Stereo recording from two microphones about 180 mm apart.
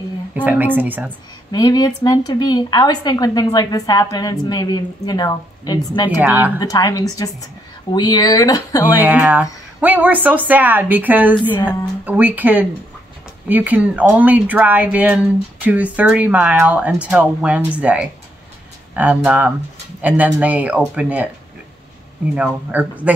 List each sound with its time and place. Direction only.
0.4 s speech: 10° right (ahead or behind)
1.5 s speech: 20° left (ahead or behind)
6.0 s speech: 10° right (ahead or behind)
6.6 s speech: 20° left (ahead or behind)
9.0 s speech: 5° right (ahead or behind)
22.3 s speech: 10° right (ahead or behind)